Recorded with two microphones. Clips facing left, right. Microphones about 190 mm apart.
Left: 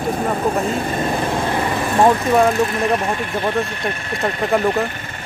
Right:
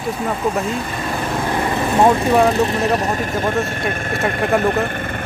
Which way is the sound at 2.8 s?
40° right (ahead or behind).